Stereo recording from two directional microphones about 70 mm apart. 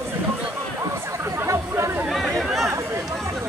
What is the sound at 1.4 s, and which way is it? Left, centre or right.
Chatter, right.